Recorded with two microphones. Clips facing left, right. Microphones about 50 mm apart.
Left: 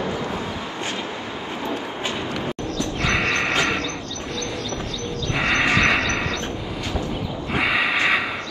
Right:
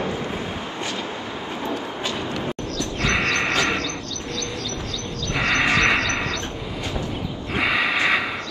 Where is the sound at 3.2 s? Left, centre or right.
Centre.